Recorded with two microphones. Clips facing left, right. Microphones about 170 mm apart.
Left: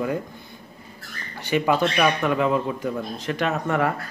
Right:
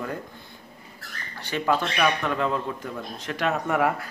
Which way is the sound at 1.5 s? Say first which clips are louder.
Left 4 dB; 10° left (ahead or behind).